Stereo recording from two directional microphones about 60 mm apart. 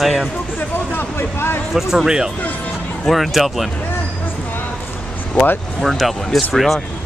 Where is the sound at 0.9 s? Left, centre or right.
Left.